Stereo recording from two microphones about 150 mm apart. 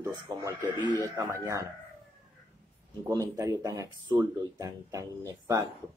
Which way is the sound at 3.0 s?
20° right (ahead or behind).